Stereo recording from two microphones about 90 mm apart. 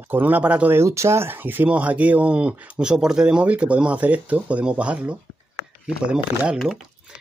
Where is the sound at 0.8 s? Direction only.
30° right (ahead or behind).